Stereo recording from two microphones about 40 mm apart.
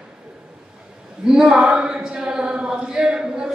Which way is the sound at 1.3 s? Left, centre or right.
Centre.